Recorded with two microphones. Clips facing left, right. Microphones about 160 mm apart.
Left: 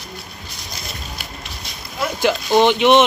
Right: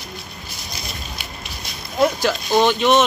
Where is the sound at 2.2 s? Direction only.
15° left (ahead or behind).